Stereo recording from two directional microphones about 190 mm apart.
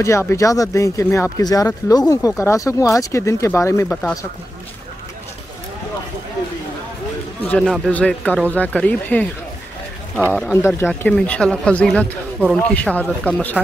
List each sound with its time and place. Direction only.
0.0 s speech: 15° left (ahead or behind)
7.4 s speech: 5° left (ahead or behind)
10.3 s speech: 10° left (ahead or behind)